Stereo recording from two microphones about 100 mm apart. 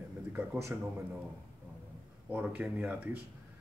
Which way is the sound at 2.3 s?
15° right (ahead or behind).